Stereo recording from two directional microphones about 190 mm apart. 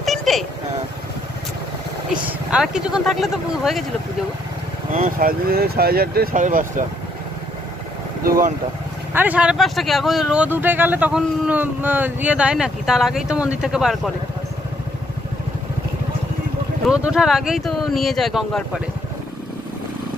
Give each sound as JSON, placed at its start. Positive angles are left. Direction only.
{"t": 0.0, "sound": "a sound", "side_deg": 0}
{"t": 2.2, "sound": "speech", "side_deg": -5}
{"t": 4.9, "sound": "speech", "side_deg": -45}
{"t": 8.3, "sound": "speech", "side_deg": -45}
{"t": 9.1, "sound": "speech", "side_deg": -10}
{"t": 16.8, "sound": "speech", "side_deg": -5}